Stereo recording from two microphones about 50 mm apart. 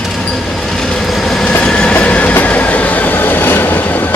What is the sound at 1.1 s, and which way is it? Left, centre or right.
Train, centre.